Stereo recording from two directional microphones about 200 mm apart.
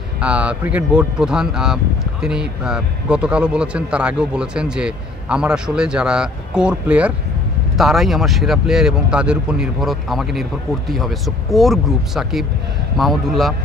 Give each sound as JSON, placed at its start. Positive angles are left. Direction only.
{"t": 0.2, "sound": "speech", "side_deg": -5}